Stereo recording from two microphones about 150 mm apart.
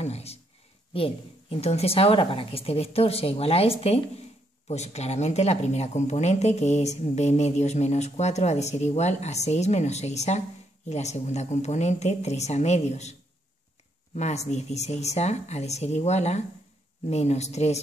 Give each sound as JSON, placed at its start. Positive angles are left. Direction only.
{"t": 0.0, "sound": "speech", "side_deg": 45}
{"t": 14.1, "sound": "speech", "side_deg": 50}